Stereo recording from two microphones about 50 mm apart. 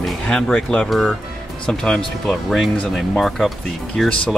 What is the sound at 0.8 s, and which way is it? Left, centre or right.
Speech, centre.